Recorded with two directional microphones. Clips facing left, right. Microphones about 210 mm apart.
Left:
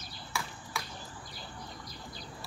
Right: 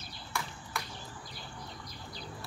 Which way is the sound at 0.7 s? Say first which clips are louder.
Even; centre (ahead or behind).